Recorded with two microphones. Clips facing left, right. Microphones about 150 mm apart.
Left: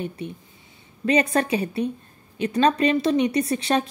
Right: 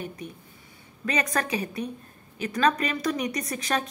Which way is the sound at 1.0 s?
30° left (ahead or behind).